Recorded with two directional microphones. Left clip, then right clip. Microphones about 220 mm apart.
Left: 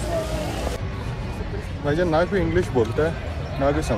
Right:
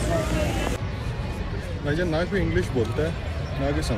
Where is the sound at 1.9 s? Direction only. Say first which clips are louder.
Left 5 dB; centre (ahead or behind).